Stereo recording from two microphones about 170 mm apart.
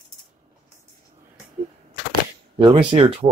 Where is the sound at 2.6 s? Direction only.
25° right (ahead or behind).